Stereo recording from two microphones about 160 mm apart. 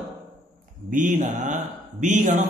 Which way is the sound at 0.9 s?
50° right (ahead or behind).